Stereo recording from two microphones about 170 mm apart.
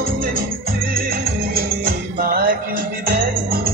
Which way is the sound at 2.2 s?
60° right (ahead or behind).